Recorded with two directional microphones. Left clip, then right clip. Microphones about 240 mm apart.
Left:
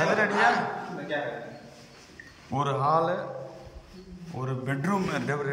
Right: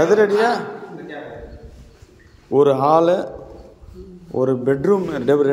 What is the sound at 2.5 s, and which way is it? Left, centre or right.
Speech, right.